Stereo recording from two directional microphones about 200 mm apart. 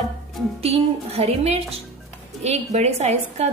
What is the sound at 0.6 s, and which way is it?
A woman's voice, 30° right (ahead or behind).